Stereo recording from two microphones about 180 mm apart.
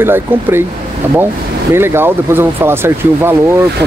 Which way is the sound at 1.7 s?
15° right (ahead or behind).